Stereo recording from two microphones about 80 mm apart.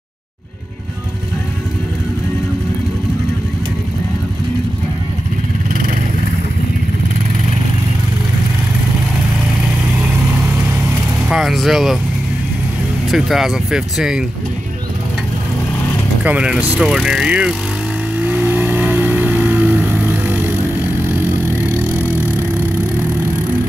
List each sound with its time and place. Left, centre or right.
11.2 s vehicle: centre
13.1 s speech: centre
16.3 s speech: centre
18.1 s vehicle: centre
21.4 s vehicle: left
21.7 s vehicle: centre